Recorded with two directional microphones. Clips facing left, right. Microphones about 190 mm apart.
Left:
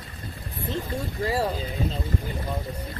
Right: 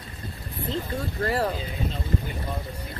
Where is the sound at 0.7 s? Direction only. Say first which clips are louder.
Even; 10° left (ahead or behind).